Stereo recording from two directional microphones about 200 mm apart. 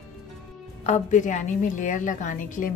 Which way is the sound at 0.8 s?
35° left (ahead or behind).